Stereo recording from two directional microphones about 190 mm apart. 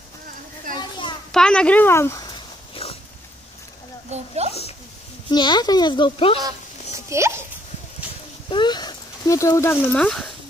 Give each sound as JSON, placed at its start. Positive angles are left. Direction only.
{"t": 0.7, "sound": "children playing", "side_deg": 25}
{"t": 1.3, "sound": "pig", "side_deg": 5}
{"t": 4.1, "sound": "speech", "side_deg": -35}
{"t": 5.3, "sound": "speech", "side_deg": 25}
{"t": 7.1, "sound": "speech", "side_deg": -15}
{"t": 8.5, "sound": "speech", "side_deg": 25}